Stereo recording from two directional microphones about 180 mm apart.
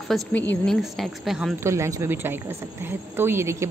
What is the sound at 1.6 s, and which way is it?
Speech, 15° right (ahead or behind).